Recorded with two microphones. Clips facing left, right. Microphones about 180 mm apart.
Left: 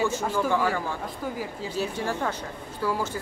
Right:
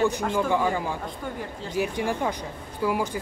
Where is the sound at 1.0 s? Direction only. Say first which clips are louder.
Left 1 dB; 5° left (ahead or behind).